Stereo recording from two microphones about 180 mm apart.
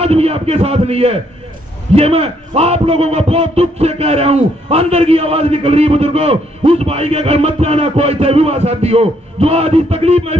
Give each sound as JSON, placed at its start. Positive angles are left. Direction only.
{"t": 0.0, "sound": "a man's voice", "side_deg": -35}